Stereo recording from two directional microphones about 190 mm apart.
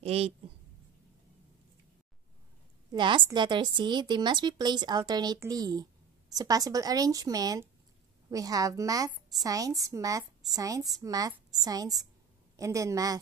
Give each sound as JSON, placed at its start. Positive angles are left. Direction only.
{"t": 0.0, "sound": "speech", "side_deg": -30}
{"t": 2.9, "sound": "a woman's voice", "side_deg": -25}